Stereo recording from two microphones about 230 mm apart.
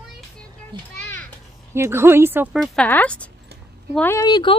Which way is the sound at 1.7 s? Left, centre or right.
Centre.